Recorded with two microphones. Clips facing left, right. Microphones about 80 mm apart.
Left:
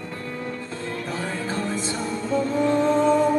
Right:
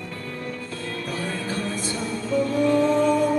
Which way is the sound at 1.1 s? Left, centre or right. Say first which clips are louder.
Even; left.